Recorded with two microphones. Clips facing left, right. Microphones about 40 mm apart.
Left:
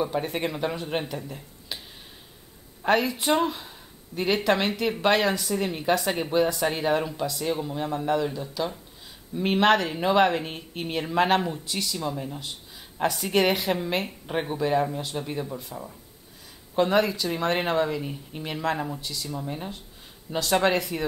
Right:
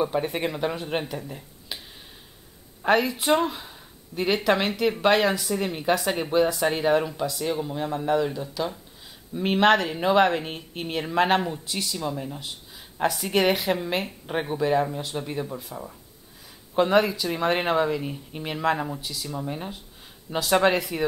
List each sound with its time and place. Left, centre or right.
0.0 s speech: centre
1.7 s a sound: centre
2.8 s speech: centre